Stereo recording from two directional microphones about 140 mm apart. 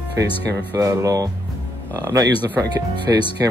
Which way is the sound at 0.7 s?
25° right (ahead or behind).